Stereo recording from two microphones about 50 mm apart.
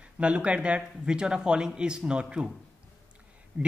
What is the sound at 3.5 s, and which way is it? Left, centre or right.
Speech, right.